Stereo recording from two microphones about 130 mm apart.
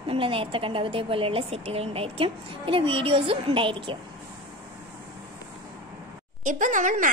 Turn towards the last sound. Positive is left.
turn(degrees=-90)